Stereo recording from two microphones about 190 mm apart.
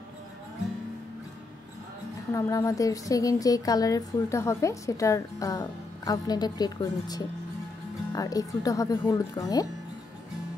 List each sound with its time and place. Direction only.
2.3 s a woman's voice: 15° left (ahead or behind)